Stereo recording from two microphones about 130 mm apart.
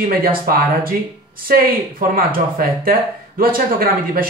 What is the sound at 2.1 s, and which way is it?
Speech, 90° right.